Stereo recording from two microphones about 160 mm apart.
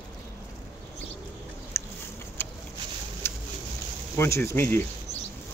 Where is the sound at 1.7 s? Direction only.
15° left (ahead or behind).